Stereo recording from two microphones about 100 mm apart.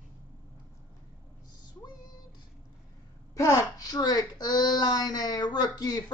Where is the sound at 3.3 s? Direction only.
35° left (ahead or behind).